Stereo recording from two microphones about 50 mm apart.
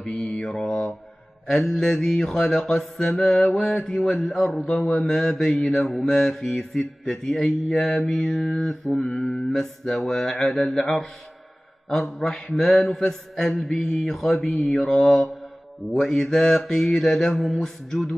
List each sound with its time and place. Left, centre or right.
0.3 s mantra: centre
0.7 s speech: centre
1.5 s mantra: centre
12.1 s mantra: centre
14.5 s mantra: left
14.9 s mantra: centre